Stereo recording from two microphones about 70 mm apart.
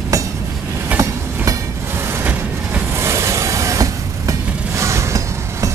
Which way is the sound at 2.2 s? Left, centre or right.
Right.